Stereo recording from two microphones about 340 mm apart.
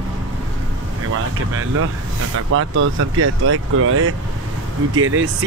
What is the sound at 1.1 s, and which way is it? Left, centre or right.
Speech, right.